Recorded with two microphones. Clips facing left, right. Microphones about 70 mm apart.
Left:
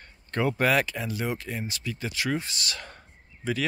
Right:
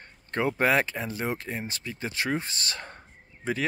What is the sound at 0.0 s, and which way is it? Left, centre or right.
Speech, right.